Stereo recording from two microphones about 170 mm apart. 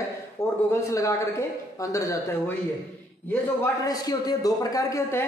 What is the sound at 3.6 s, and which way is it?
A man's voice, 20° left (ahead or behind).